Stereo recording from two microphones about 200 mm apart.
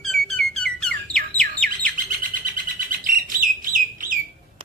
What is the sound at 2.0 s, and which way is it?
Bird, 40° right (ahead or behind).